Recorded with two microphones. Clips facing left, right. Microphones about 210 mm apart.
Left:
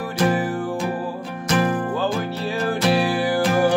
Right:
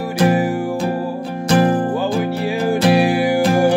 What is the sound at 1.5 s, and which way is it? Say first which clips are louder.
Music: right 6 dB; 30° right (ahead or behind).